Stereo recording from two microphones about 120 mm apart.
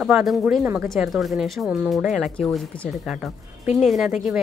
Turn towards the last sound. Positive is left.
turn(degrees=0)  # may be behind; listen again after turning